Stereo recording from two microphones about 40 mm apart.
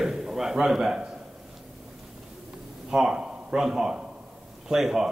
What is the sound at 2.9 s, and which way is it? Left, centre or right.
Speech, centre.